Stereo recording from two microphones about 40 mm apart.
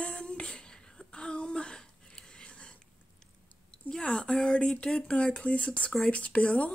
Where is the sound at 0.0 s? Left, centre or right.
Left.